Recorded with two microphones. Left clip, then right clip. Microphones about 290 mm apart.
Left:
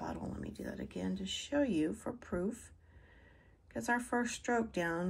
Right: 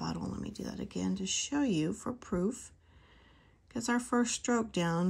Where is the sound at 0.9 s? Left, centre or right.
Centre.